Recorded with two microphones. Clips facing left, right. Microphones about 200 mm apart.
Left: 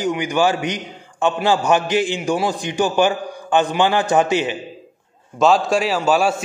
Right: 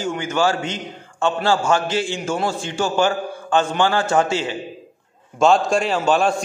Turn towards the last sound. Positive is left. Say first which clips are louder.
# left 1 dB
turn(degrees=5)  # may be behind; listen again after turning